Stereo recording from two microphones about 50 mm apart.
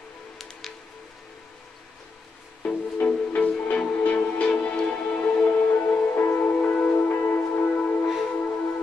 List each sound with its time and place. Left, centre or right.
0.4 s music: centre
2.6 s music: left
7.1 s music: left